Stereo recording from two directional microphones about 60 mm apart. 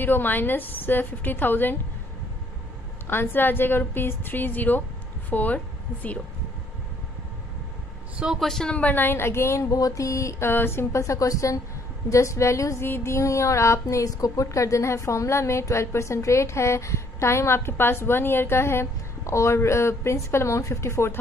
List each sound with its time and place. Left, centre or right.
0.0 s a woman's voice: left
3.1 s a woman's voice: left
8.4 s speech: centre
8.7 s speech: left
10.4 s a woman's voice: left
12.8 s speech: left